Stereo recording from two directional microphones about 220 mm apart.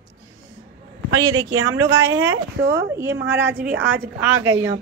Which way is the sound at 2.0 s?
15° right (ahead or behind).